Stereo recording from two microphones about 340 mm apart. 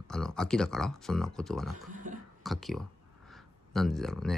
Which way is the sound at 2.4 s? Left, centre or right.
Centre.